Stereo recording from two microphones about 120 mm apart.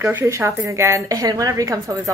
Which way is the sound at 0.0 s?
20° right (ahead or behind).